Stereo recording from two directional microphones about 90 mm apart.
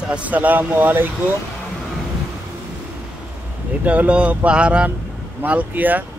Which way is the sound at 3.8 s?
15° right (ahead or behind).